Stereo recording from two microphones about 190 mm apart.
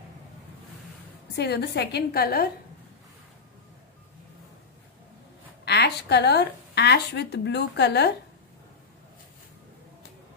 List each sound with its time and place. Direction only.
1.3 s a woman's voice: 60° left (ahead or behind)
5.7 s speech: 60° left (ahead or behind)